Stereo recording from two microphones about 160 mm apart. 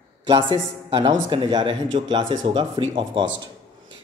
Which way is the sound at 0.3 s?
30° right (ahead or behind).